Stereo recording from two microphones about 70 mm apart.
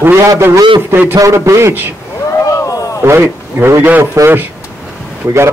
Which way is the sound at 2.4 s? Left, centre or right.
Left.